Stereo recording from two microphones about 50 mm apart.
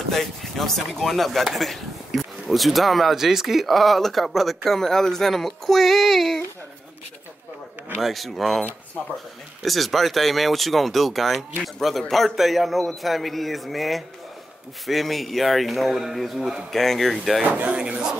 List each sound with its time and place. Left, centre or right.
0.1 s speech: centre
8.0 s a man's voice: centre
17.4 s speech: right